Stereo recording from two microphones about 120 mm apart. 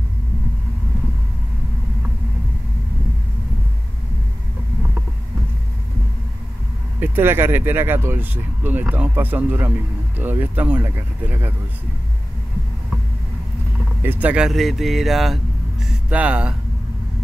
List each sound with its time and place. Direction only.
7.0 s speech: 20° right (ahead or behind)
14.0 s speech: 15° right (ahead or behind)